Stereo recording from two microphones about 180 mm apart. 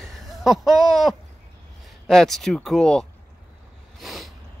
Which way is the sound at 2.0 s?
Centre (ahead or behind).